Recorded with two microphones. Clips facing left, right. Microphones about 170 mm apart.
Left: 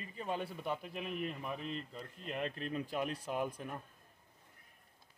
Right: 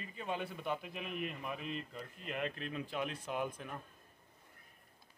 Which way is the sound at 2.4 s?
40° left (ahead or behind).